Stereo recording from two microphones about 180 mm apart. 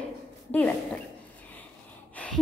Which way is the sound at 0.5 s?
10° left (ahead or behind).